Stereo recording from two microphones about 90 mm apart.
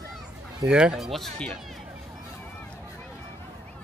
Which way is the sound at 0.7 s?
10° right (ahead or behind).